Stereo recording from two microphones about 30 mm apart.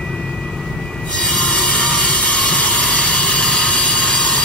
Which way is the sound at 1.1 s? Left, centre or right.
Left.